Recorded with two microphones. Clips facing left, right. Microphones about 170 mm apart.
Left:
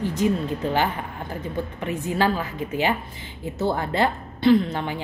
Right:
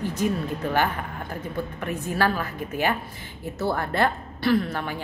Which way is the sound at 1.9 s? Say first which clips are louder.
Left 2 dB; 15° left (ahead or behind).